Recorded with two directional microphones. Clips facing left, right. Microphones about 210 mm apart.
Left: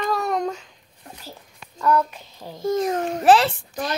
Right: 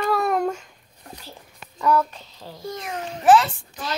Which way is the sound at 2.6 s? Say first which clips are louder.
Left 10 dB; 45° left (ahead or behind).